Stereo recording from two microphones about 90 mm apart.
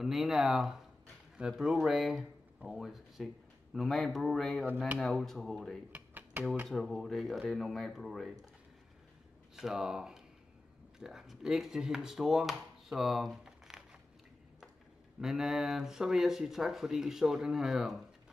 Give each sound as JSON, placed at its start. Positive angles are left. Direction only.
{"t": 0.0, "sound": "speech", "side_deg": 0}
{"t": 5.9, "sound": "a sound", "side_deg": -20}
{"t": 6.7, "sound": "speech", "side_deg": 0}
{"t": 9.6, "sound": "speech", "side_deg": -5}
{"t": 15.1, "sound": "speech", "side_deg": -5}